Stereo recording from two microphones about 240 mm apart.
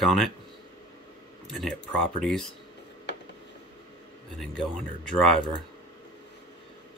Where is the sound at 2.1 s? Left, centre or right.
Centre.